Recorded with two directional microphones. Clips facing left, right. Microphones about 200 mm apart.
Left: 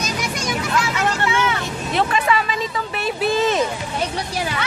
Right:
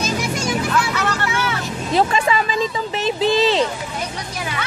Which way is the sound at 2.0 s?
30° right (ahead or behind).